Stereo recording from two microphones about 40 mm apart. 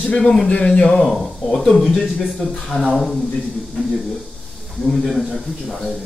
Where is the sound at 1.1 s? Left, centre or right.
Centre.